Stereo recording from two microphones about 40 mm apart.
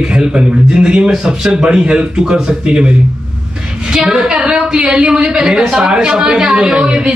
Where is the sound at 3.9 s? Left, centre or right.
Centre.